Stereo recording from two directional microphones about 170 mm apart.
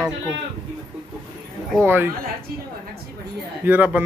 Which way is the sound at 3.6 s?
10° right (ahead or behind).